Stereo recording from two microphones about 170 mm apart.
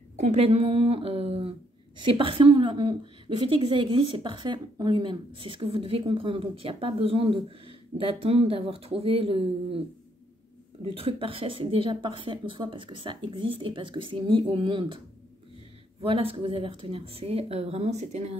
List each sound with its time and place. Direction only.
0.1 s a woman's voice: 40° right (ahead or behind)
10.8 s a woman's voice: 35° right (ahead or behind)
16.0 s a woman's voice: 35° right (ahead or behind)